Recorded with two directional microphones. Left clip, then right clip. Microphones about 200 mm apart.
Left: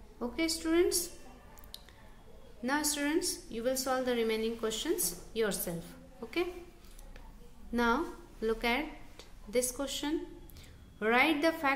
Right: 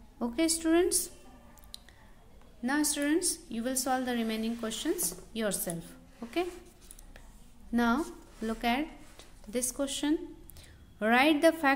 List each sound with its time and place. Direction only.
0.2 s a woman's voice: 35° right (ahead or behind)
2.6 s a woman's voice: 30° right (ahead or behind)
7.7 s a woman's voice: 30° right (ahead or behind)